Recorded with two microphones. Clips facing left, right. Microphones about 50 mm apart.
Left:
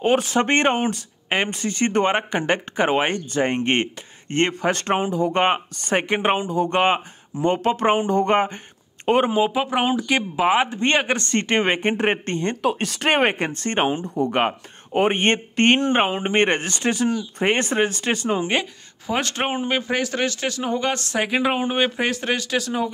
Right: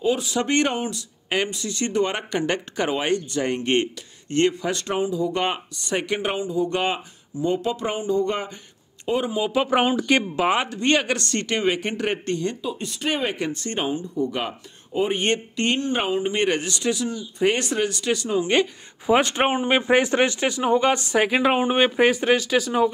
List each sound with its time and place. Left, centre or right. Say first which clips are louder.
0.0 s speech: left 4 dB; left
9.6 s speech: right 1 dB; centre
10.7 s speech: left 1 dB; left
12.6 s speech: left 6 dB; left
13.1 s speech: left 6 dB; left
13.9 s speech: left 4 dB; left
19.0 s speech: right 4 dB; centre